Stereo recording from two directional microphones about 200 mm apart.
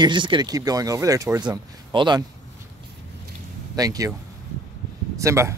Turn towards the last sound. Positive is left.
turn(degrees=-15)  # may be behind; listen again after turning